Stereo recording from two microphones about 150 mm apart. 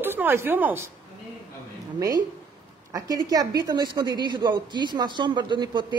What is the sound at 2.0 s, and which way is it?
A woman's voice, 25° right (ahead or behind).